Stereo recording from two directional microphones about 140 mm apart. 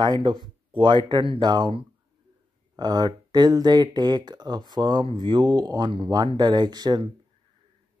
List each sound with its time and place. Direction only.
0.0 s speech: 35° right (ahead or behind)